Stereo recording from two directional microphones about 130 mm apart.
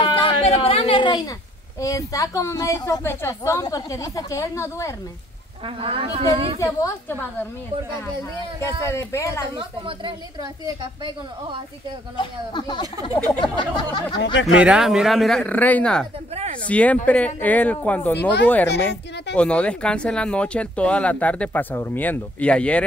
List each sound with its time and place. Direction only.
0.0 s a sound: 40° left (ahead or behind)
1.8 s a woman's voice: 25° left (ahead or behind)
5.8 s a woman's voice: 45° right (ahead or behind)
6.6 s a woman's voice: 25° left (ahead or behind)
8.5 s a woman's voice: 20° left (ahead or behind)
9.6 s a woman's voice: 40° right (ahead or behind)
12.2 s speech: 35° left (ahead or behind)
14.6 s speech: 5° right (ahead or behind)